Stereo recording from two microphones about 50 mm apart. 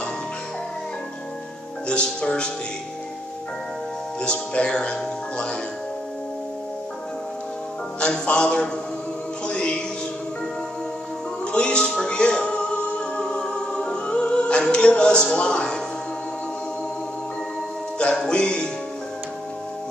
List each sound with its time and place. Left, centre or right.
1.9 s speech: centre
4.2 s speech: centre
8.0 s speech: centre
11.5 s music: centre
15.3 s speech: centre
17.9 s music: centre